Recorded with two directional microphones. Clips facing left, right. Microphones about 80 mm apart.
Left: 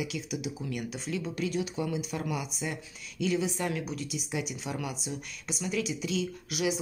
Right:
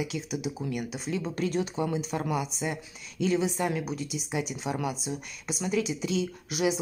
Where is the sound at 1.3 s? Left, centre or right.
Right.